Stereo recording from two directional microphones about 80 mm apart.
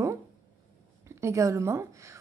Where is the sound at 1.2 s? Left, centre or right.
Right.